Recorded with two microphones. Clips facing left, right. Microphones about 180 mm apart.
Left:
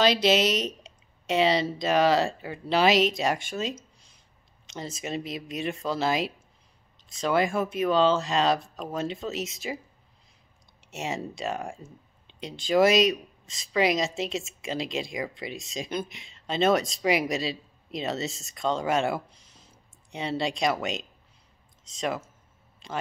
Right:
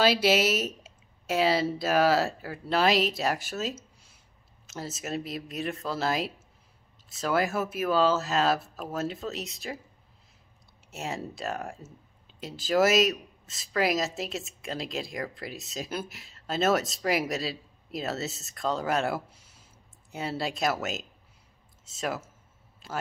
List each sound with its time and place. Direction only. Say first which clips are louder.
0.0 s speech: left 1 dB; 10° right (ahead or behind)
10.9 s a man's voice: left 2 dB; centre (ahead or behind)